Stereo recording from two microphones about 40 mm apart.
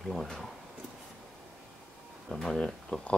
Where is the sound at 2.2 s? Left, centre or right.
Centre.